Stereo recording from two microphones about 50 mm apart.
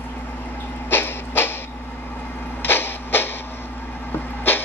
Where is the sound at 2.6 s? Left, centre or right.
Left.